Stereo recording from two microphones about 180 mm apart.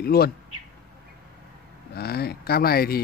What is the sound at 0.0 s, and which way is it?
Speech, 60° left (ahead or behind).